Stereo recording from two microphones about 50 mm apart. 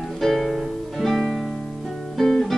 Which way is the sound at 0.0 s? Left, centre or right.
Centre.